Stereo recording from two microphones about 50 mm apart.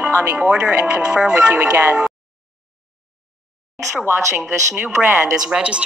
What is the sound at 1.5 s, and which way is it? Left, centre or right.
Speech, right.